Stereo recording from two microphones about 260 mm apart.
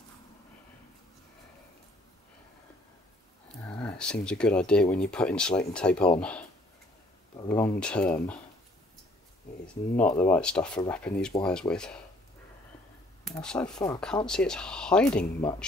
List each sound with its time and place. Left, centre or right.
3.6 s speech: centre
7.4 s speech: centre
9.9 s speech: centre
13.2 s speech: centre